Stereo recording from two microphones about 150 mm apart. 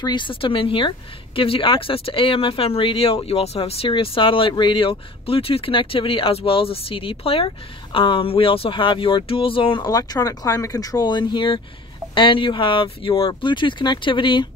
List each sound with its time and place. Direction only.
0.0 s a woman's voice: 30° left (ahead or behind)
9.8 s a woman's voice: 25° left (ahead or behind)